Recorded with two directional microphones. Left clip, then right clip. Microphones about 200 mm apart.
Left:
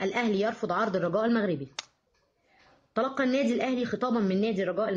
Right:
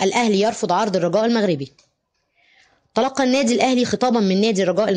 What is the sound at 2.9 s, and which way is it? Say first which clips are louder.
Speech: right 9 dB; 35° right (ahead or behind).